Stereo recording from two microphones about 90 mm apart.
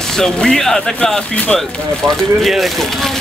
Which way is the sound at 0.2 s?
5° left (ahead or behind).